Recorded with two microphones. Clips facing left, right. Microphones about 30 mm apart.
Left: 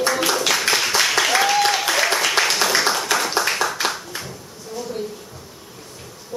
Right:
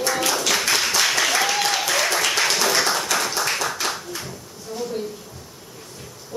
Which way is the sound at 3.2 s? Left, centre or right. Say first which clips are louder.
Left 3 dB; centre.